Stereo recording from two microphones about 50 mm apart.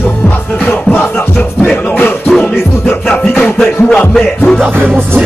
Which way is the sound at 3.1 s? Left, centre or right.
Left.